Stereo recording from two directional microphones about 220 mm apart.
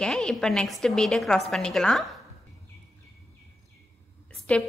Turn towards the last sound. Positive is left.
turn(degrees=5)  # may be behind; listen again after turning